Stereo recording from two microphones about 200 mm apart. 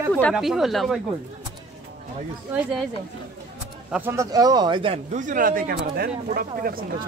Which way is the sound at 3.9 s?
10° right (ahead or behind).